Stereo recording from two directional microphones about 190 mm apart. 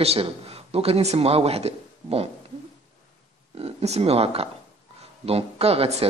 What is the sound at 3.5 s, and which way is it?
Speech, 35° right (ahead or behind).